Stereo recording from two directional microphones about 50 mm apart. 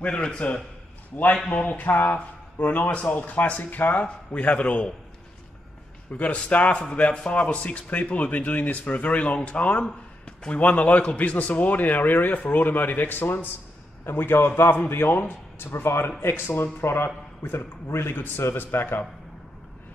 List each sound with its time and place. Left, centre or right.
0.0 s a man's voice: left
6.1 s a man's voice: left